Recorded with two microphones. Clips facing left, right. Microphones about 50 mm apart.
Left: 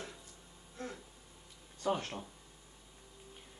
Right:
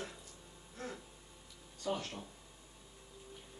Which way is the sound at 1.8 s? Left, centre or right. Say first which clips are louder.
Left 4 dB; left.